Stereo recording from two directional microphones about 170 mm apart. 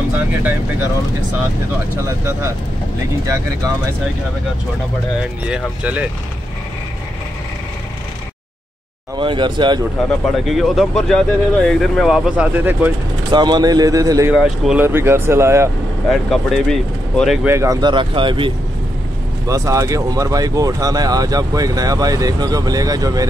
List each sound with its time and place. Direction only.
3.3 s speech: 20° right (ahead or behind)
5.5 s speech: 10° right (ahead or behind)
9.1 s speech: 30° right (ahead or behind)
10.0 s speech: centre (ahead or behind)
13.3 s speech: 25° right (ahead or behind)
14.3 s speech: centre (ahead or behind)
16.1 s speech: centre (ahead or behind)
17.5 s speech: 20° right (ahead or behind)
19.4 s speech: 20° right (ahead or behind)